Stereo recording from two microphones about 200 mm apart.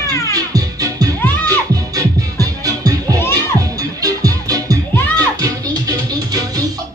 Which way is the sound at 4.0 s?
20° right (ahead or behind).